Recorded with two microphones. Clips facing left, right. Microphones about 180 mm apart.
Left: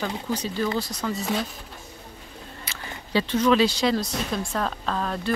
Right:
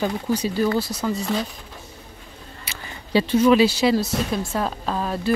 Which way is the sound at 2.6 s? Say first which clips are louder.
Right 1 dB; 10° right (ahead or behind).